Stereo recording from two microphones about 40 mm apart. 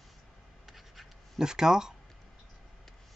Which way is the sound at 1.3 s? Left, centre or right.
Centre.